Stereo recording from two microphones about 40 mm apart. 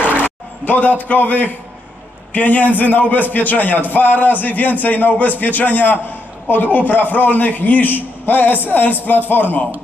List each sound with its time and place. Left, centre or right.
0.7 s a man's voice: left